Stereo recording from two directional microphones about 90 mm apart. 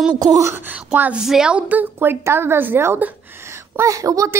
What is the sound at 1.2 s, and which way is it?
Speech, 5° right (ahead or behind).